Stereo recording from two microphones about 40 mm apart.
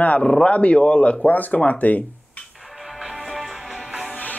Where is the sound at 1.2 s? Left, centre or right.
Left.